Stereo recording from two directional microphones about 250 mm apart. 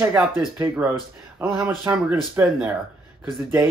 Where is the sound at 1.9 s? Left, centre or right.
Centre.